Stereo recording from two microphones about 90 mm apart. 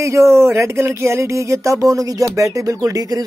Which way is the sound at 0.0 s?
35° right (ahead or behind).